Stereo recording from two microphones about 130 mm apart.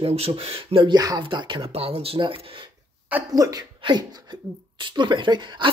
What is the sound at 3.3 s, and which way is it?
Speech, 30° right (ahead or behind).